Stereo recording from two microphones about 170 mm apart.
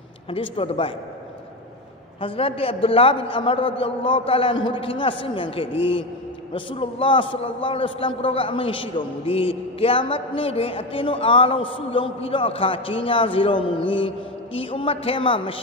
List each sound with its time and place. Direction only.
0.3 s a man's voice: 35° left (ahead or behind)
2.1 s a man's voice: 35° left (ahead or behind)